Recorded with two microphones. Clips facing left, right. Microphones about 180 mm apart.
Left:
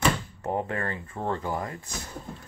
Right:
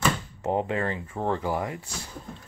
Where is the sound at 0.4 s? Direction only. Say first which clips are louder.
Right 3 dB; 15° right (ahead or behind).